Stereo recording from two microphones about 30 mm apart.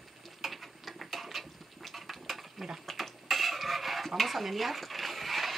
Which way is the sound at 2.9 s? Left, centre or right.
Centre.